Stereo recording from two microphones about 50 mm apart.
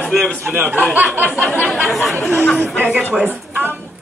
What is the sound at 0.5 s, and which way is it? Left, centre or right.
Speech, right.